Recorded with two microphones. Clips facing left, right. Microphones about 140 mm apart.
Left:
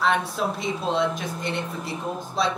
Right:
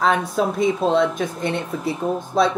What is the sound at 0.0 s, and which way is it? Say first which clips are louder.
Speech: right 4 dB; 45° right (ahead or behind).